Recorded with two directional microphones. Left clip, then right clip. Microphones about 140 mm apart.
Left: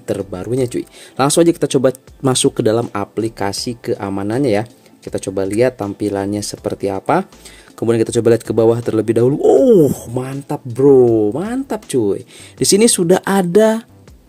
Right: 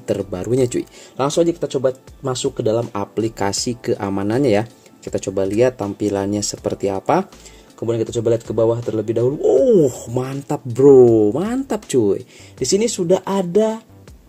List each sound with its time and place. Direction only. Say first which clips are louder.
0.2 s speech: even; 5° left (ahead or behind)
1.2 s speech: left 5 dB; 60° left (ahead or behind); by 2.6 s 85° left
3.2 s speech: right 1 dB; 10° left (ahead or behind)
7.8 s speech: left 5 dB; 55° left (ahead or behind)
9.7 s speech: left 3 dB; 40° left (ahead or behind)
10.0 s speech: even; 5° left (ahead or behind)
12.5 s speech: left 6 dB; 55° left (ahead or behind)